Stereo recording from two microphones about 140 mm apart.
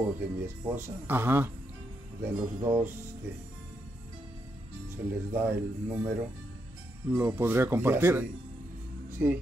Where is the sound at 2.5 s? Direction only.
25° right (ahead or behind).